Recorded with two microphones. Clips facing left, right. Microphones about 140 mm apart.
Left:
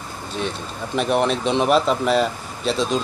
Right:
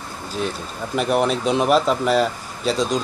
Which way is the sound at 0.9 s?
Centre (ahead or behind).